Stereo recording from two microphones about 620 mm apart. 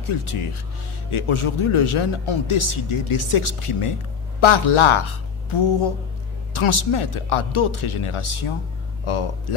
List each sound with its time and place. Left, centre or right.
0.0 s a woman's voice: left